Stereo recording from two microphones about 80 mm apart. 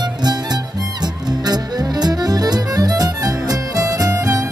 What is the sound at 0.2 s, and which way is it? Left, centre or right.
Music, right.